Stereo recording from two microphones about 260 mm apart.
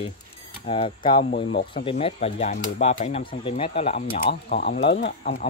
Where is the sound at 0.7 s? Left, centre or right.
Left.